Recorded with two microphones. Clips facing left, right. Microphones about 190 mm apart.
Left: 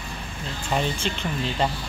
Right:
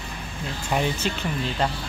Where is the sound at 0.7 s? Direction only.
5° right (ahead or behind).